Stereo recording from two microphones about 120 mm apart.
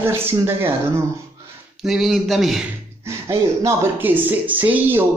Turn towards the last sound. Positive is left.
turn(degrees=-15)  # may be behind; listen again after turning